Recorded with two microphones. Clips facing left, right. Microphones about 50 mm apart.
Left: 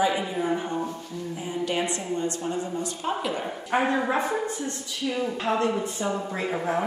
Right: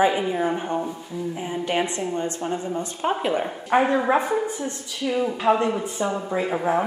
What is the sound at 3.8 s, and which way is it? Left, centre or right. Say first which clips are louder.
A woman's voice: right 4 dB; centre.